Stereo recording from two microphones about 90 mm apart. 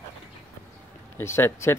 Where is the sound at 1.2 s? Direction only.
30° left (ahead or behind).